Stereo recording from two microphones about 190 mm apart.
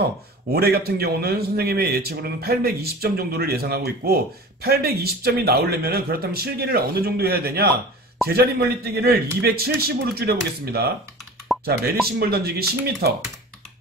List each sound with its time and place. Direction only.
0.0 s a man's voice: 55° right (ahead or behind)